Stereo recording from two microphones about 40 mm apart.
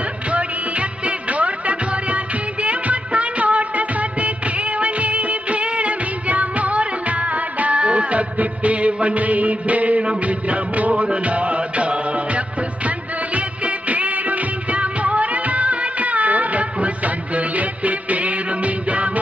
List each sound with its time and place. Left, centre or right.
0.3 s music: right